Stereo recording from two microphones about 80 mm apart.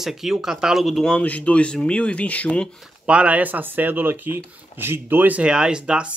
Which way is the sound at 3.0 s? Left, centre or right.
Centre.